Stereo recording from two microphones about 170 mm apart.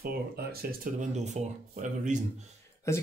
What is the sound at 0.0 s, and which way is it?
Speech, 65° right (ahead or behind).